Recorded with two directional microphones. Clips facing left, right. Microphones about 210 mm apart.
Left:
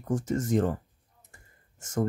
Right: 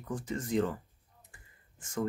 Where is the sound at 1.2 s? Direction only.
45° left (ahead or behind).